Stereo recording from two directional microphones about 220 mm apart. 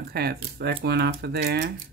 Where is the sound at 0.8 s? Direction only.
45° right (ahead or behind).